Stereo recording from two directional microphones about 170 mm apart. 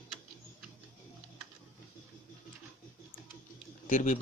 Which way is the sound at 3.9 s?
45° left (ahead or behind).